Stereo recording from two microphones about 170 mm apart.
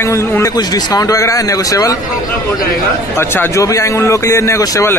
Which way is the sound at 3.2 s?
15° left (ahead or behind).